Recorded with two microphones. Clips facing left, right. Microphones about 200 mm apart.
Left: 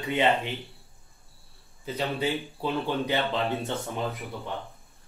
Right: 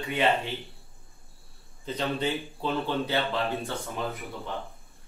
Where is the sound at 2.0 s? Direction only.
10° left (ahead or behind).